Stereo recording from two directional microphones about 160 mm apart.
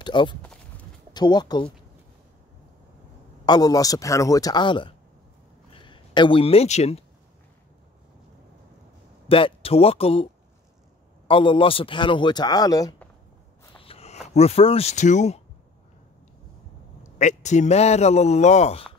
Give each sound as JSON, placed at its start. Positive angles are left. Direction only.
{"t": 0.0, "sound": "speech", "side_deg": 30}
{"t": 0.4, "sound": "a sound", "side_deg": 10}
{"t": 1.1, "sound": "speech", "side_deg": 25}
{"t": 3.4, "sound": "speech", "side_deg": 25}
{"t": 9.3, "sound": "a man's voice", "side_deg": 35}
{"t": 11.2, "sound": "a man's voice", "side_deg": 35}
{"t": 13.7, "sound": "a sound", "side_deg": 35}
{"t": 14.2, "sound": "a man's voice", "side_deg": 45}
{"t": 17.2, "sound": "a man's voice", "side_deg": 45}